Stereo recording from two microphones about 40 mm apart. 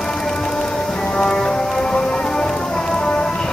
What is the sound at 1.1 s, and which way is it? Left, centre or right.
Music, centre.